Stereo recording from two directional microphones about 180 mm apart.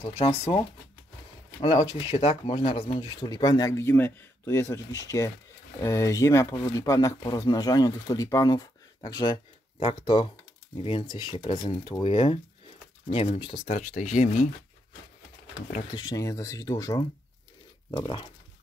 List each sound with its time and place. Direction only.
0.2 s speech: 35° left (ahead or behind)
1.6 s speech: 35° left (ahead or behind)
3.0 s speech: 25° left (ahead or behind)
13.7 s speech: 45° left (ahead or behind)
15.9 s speech: 25° left (ahead or behind)